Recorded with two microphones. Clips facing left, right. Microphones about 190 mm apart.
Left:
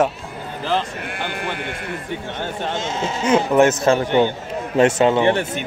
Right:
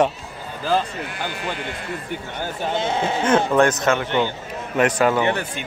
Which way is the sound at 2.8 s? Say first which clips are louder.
Right 2 dB; 60° right (ahead or behind).